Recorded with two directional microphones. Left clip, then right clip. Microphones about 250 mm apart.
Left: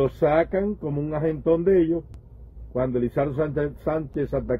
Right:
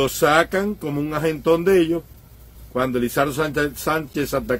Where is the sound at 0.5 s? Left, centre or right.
Centre.